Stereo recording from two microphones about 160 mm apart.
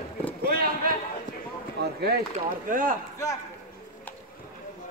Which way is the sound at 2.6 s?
60° right (ahead or behind).